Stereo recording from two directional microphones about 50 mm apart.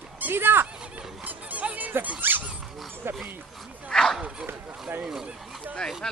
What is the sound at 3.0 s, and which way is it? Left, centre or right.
Dog, right.